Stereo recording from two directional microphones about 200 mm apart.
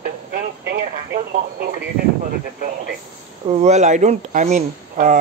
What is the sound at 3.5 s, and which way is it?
Speech, 35° right (ahead or behind).